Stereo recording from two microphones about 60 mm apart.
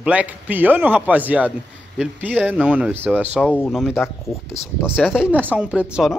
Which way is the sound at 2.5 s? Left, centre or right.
Centre.